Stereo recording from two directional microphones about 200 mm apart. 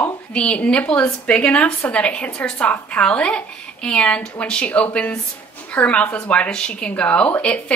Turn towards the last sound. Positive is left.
turn(degrees=5)  # may be behind; listen again after turning